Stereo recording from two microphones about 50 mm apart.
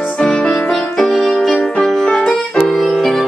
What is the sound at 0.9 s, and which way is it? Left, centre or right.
Music, centre.